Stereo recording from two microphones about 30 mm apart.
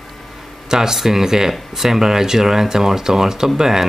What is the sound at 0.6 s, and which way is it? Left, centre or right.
Speech, right.